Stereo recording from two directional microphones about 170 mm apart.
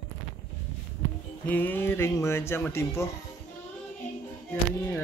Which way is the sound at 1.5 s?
10° left (ahead or behind).